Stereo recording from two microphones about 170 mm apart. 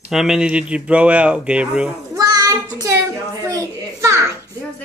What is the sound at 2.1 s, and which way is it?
Child singing, 20° right (ahead or behind).